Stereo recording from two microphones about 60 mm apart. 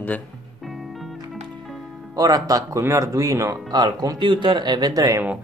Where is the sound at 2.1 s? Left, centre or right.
Right.